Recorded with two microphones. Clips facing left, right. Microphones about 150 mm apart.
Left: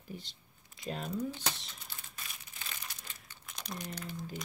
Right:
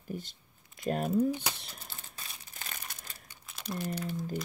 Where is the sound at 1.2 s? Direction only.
10° right (ahead or behind).